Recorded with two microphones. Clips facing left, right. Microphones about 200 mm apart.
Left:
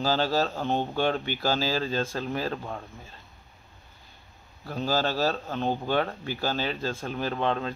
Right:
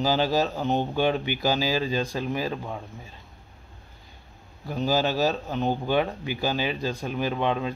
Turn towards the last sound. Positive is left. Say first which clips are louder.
# right 2 dB
turn(degrees=-10)  # may be behind; listen again after turning